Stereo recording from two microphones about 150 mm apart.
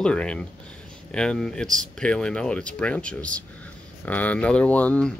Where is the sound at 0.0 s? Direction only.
5° left (ahead or behind).